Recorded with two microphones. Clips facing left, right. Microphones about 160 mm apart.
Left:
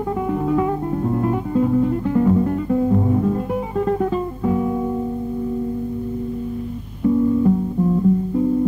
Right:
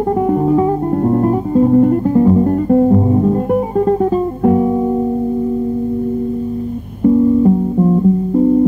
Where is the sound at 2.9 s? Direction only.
35° right (ahead or behind).